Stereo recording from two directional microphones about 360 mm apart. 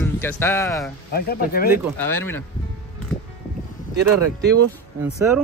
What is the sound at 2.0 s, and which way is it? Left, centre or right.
Speech, centre.